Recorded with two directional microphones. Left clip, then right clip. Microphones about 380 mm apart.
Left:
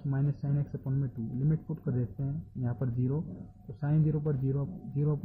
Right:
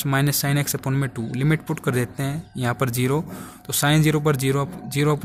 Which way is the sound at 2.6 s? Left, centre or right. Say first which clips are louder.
Right 14 dB; centre.